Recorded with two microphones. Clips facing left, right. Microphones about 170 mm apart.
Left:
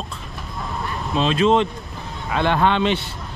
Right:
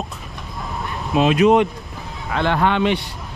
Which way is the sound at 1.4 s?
15° right (ahead or behind).